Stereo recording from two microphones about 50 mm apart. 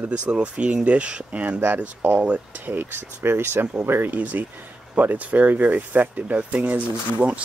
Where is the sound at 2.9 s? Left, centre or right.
Right.